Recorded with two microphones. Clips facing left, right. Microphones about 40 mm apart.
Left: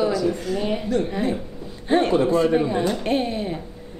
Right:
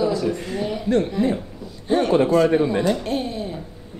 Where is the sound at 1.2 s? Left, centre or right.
Left.